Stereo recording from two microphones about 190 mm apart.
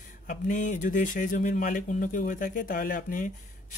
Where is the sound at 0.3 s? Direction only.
40° left (ahead or behind).